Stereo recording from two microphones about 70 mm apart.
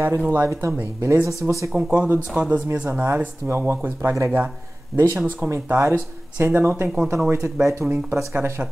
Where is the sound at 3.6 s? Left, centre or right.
Right.